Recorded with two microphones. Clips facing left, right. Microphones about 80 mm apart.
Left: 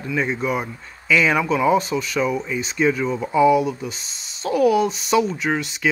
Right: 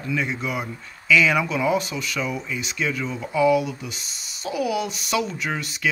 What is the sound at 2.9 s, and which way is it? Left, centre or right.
Speech, centre.